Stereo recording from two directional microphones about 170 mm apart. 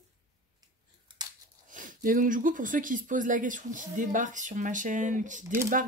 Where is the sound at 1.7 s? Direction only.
50° right (ahead or behind).